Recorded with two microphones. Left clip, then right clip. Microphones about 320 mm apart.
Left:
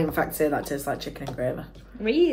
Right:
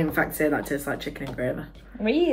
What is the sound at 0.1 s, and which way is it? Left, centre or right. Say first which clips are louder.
Speech: right 1 dB; centre.